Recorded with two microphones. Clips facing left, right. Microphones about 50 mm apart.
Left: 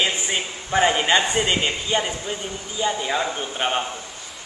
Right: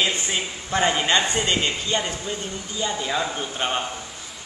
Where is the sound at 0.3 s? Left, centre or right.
Centre.